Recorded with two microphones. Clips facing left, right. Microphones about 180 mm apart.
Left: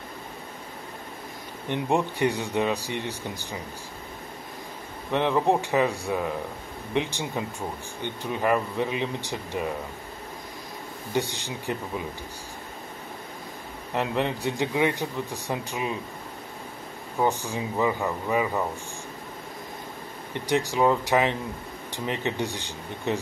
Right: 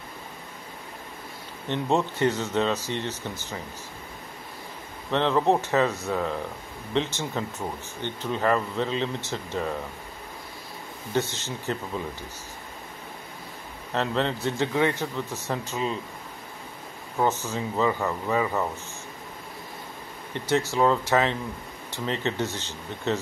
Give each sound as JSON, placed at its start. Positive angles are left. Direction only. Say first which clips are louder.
{"t": 1.7, "sound": "a man's voice", "louder": "even", "side_deg": 15}
{"t": 5.1, "sound": "a man's voice", "louder": "right 1 dB", "side_deg": 15}
{"t": 11.1, "sound": "a man's voice", "louder": "right 1 dB", "side_deg": 15}
{"t": 13.9, "sound": "a man's voice", "louder": "even", "side_deg": 15}
{"t": 17.2, "sound": "a man's voice", "louder": "even", "side_deg": 15}
{"t": 20.3, "sound": "a man's voice", "louder": "even", "side_deg": 15}